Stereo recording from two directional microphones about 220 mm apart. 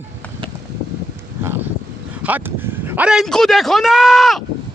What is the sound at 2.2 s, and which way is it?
Speech, 10° right (ahead or behind).